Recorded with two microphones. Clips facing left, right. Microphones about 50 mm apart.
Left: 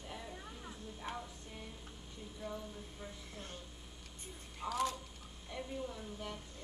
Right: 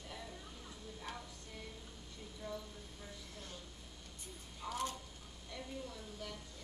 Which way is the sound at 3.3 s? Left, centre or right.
Left.